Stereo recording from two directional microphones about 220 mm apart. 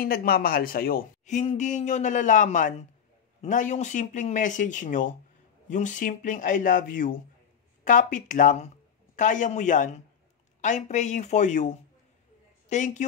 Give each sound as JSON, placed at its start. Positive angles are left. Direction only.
{"t": 0.0, "sound": "speech", "side_deg": 40}